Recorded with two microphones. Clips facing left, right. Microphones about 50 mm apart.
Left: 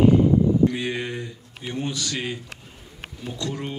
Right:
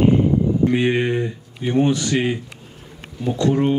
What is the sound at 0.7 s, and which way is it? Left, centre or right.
Speech, right.